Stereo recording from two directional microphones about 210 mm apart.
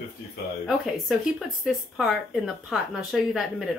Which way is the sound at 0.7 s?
Centre (ahead or behind).